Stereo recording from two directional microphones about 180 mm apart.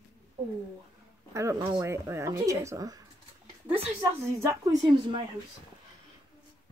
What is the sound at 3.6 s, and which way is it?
Speech, 30° right (ahead or behind).